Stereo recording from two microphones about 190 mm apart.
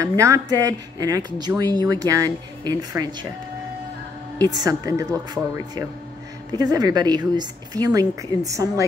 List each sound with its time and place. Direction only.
0.0 s speech: 15° right (ahead or behind)
4.6 s a woman's voice: 20° right (ahead or behind)